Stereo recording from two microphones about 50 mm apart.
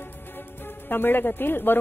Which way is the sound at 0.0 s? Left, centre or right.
Left.